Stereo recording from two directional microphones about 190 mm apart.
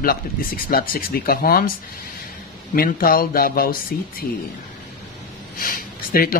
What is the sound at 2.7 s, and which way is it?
Speech, 50° left (ahead or behind).